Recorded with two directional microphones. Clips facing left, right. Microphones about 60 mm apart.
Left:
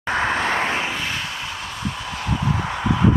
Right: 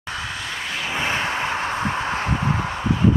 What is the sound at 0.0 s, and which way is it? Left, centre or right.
Vehicle, left.